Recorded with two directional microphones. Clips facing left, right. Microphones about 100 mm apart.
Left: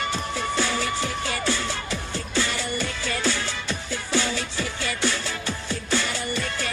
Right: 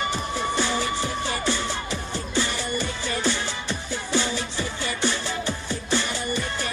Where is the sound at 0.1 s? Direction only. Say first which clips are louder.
Right 1 dB; 15° right (ahead or behind).